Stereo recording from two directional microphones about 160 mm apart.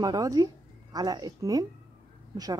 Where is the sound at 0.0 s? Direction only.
25° right (ahead or behind).